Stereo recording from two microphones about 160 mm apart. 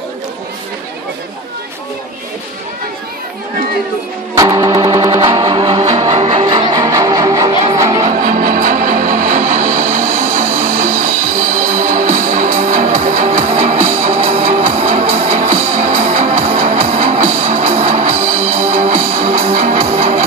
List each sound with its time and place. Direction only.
4.4 s music: 20° right (ahead or behind)
8.0 s music: 55° right (ahead or behind)